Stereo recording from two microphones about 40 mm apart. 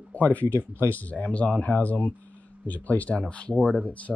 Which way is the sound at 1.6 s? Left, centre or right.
Left.